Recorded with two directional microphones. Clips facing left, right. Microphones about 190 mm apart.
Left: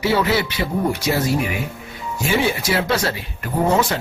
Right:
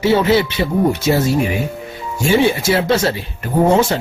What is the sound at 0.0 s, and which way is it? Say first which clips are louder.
Speech: right 5 dB; 25° right (ahead or behind).